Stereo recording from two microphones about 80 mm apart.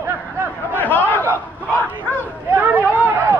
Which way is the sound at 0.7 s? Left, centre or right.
Left.